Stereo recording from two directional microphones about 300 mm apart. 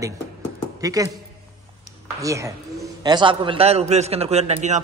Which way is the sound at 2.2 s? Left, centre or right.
Centre.